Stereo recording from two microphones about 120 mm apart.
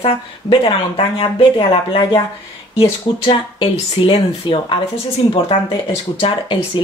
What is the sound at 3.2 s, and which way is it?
Speech, 45° left (ahead or behind).